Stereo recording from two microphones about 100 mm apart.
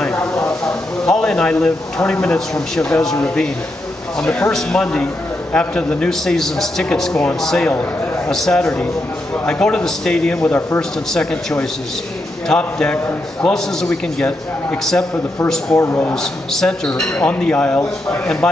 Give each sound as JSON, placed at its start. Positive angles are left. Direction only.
{"t": 0.0, "sound": "a sound", "side_deg": 10}
{"t": 1.0, "sound": "a man's voice", "side_deg": 5}
{"t": 4.2, "sound": "a man's voice", "side_deg": 5}
{"t": 15.7, "sound": "a man's voice", "side_deg": 25}
{"t": 16.2, "sound": "a man's voice", "side_deg": 5}